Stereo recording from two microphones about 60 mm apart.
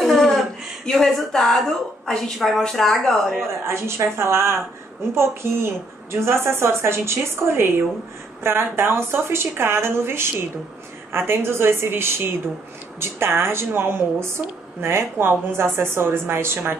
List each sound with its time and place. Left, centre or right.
0.0 s speech: centre
3.3 s speech: right